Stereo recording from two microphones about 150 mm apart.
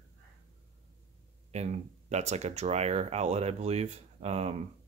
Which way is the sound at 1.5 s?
50° right (ahead or behind).